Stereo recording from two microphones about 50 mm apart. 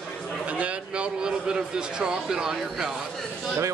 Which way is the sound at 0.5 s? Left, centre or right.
Right.